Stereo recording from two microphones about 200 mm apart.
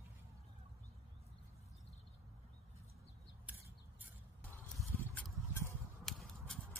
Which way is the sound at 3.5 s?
5° right (ahead or behind).